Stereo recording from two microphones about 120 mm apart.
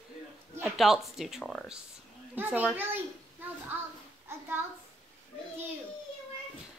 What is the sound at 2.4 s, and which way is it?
Speech, 15° right (ahead or behind).